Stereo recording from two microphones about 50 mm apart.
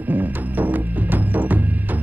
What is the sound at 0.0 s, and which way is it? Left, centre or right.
Music, right.